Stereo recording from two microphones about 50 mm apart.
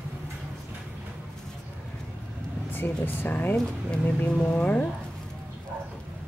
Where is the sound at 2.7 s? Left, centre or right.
Left.